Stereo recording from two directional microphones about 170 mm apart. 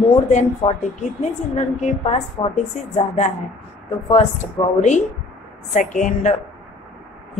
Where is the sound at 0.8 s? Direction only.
40° left (ahead or behind).